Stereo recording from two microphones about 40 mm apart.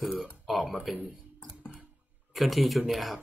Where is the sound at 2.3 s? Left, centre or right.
Centre.